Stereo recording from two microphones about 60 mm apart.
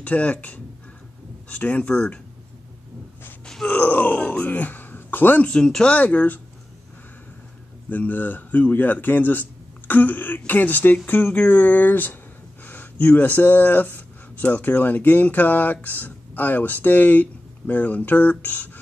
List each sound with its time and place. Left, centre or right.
0.0 s speech: left
3.4 s groan: centre
3.7 s groan: left
4.2 s a sound: left
5.5 s speech: centre
5.9 s speech: left
7.9 s speech: left